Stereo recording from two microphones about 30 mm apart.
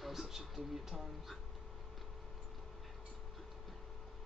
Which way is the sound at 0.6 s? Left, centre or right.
Centre.